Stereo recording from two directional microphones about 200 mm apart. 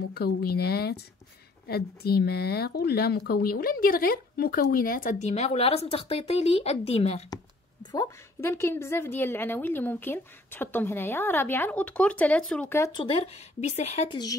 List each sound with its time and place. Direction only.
0.1 s speech: 50° left (ahead or behind); by 7.2 s 30° left (ahead or behind)
7.8 s a woman's voice: 20° left (ahead or behind)
13.0 s speech: 30° left (ahead or behind)